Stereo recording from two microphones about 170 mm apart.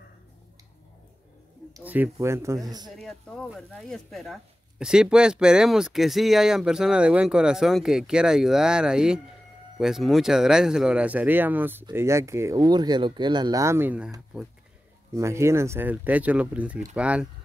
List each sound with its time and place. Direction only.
1.8 s speech: 10° right (ahead or behind)
2.9 s speech: centre (ahead or behind)
15.1 s speech: 15° right (ahead or behind)